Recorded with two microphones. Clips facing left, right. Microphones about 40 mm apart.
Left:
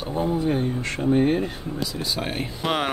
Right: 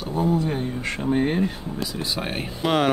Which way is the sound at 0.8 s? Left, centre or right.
Centre.